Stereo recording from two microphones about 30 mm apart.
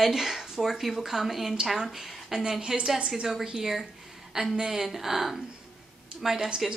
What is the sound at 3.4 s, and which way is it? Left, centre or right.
A woman's voice, centre.